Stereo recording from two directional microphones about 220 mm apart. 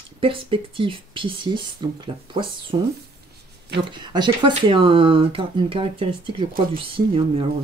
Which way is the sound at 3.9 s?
20° right (ahead or behind).